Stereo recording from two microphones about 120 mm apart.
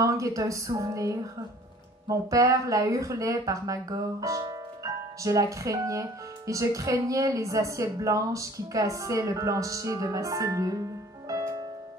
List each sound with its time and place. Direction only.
0.0 s speech: 25° right (ahead or behind)
11.2 s music: 30° right (ahead or behind)